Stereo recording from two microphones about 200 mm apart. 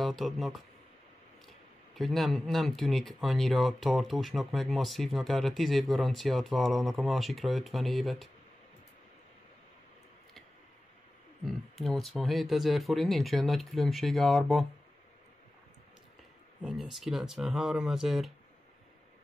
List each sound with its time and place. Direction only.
0.0 s speech: centre (ahead or behind)
2.0 s speech: centre (ahead or behind)
11.4 s speech: centre (ahead or behind)
16.6 s speech: centre (ahead or behind)